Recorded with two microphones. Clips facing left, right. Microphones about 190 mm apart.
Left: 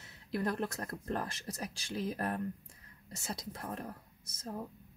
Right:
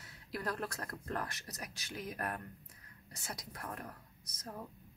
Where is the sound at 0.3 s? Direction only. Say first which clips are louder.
Left 5 dB; 20° left (ahead or behind).